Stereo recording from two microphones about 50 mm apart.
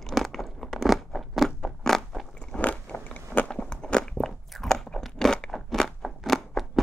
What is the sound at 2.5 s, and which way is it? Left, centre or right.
Biting, left.